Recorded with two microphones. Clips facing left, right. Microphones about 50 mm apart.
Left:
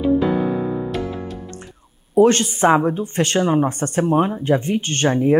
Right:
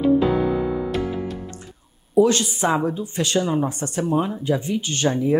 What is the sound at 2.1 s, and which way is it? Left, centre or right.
Speech, left.